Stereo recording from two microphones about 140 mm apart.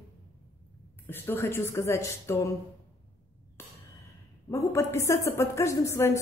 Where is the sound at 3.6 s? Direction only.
20° left (ahead or behind).